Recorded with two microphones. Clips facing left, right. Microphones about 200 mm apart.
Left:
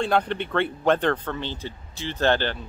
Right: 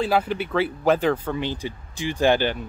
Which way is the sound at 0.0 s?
5° right (ahead or behind).